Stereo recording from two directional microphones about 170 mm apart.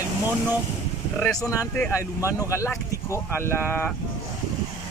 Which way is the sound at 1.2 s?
20° left (ahead or behind).